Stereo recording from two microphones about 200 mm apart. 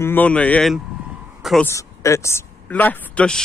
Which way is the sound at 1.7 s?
15° left (ahead or behind).